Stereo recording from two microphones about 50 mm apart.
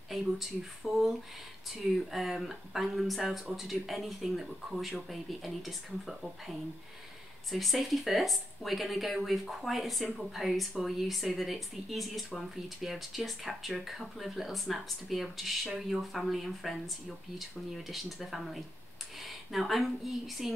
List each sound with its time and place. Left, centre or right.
0.1 s speech: centre
7.5 s speech: centre